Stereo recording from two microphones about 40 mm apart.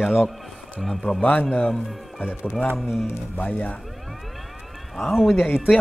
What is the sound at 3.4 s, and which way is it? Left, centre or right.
Speech, left.